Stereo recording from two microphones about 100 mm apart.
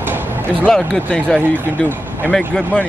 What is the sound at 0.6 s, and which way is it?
Speech, 10° left (ahead or behind).